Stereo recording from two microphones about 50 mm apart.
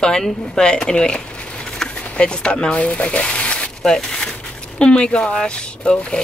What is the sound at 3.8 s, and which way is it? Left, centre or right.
Speech, centre.